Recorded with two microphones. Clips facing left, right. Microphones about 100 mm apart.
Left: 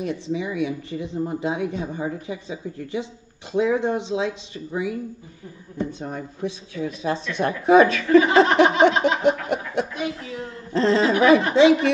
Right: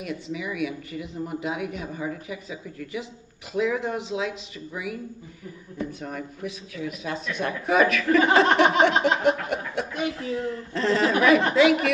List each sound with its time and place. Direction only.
0.0 s speech: 30° left (ahead or behind)